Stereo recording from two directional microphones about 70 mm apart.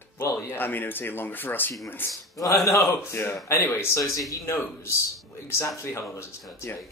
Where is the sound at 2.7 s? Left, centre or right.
Left.